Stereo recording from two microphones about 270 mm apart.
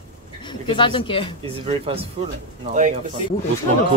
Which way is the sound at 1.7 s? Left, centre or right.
Centre.